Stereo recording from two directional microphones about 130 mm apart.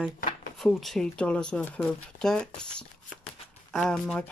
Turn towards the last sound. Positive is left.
turn(degrees=5)  # may be behind; listen again after turning